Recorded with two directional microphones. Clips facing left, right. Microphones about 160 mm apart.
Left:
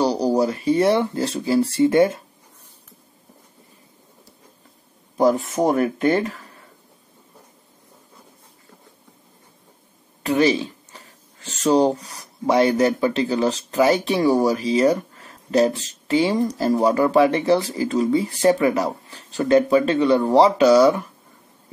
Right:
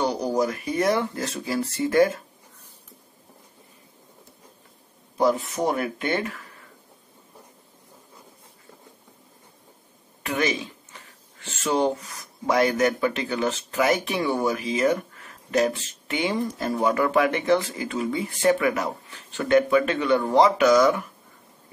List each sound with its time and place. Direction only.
0.0 s speech: 35° left (ahead or behind)
5.1 s speech: 45° left (ahead or behind)
10.2 s speech: 30° left (ahead or behind)